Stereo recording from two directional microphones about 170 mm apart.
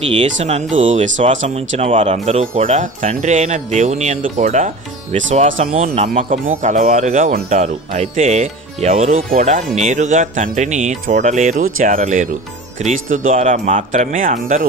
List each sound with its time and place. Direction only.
0.2 s speech: 40° right (ahead or behind)